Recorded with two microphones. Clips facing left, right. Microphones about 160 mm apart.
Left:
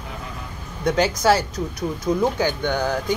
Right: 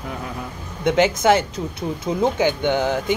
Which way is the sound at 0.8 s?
20° right (ahead or behind).